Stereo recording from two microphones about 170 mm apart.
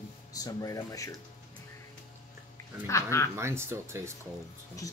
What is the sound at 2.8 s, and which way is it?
Speech, 15° left (ahead or behind).